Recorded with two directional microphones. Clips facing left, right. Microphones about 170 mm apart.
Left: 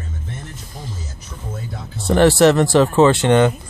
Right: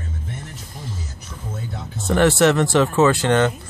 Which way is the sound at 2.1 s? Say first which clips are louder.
Left 3 dB; 35° left (ahead or behind).